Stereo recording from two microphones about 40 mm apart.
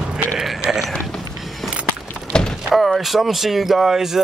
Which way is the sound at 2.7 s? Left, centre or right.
Centre.